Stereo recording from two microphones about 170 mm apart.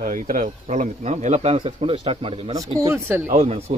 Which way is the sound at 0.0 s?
50° right (ahead or behind).